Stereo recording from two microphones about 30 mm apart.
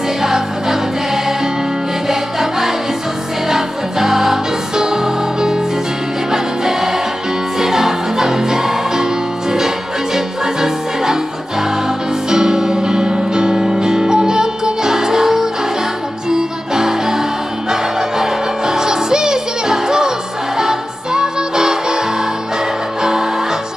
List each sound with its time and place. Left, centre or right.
0.2 s music: centre
3.4 s music: centre
4.7 s music: centre
12.3 s music: centre